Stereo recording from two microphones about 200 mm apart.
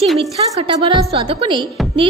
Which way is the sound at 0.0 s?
Centre (ahead or behind).